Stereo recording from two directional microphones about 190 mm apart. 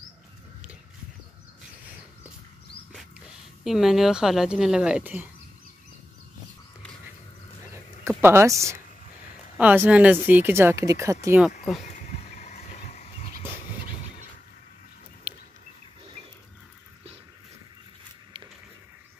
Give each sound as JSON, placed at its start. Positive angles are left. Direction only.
{"t": 3.6, "sound": "speech", "side_deg": 0}
{"t": 8.2, "sound": "speech", "side_deg": -15}
{"t": 12.0, "sound": "a sound", "side_deg": 40}